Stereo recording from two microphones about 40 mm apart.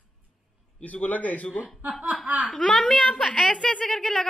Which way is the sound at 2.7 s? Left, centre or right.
Left.